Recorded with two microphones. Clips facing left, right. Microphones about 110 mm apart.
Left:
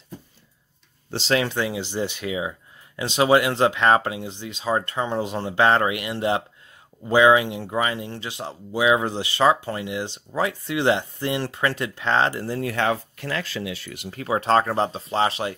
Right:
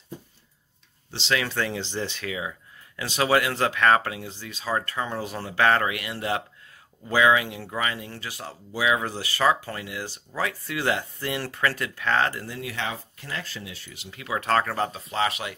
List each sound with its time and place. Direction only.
1.1 s speech: 40° left (ahead or behind)
1.4 s speech: 15° left (ahead or behind)
12.4 s speech: 45° left (ahead or behind); by 13.9 s 90° left
13.9 s speech: 45° left (ahead or behind)
14.2 s speech: 30° left (ahead or behind)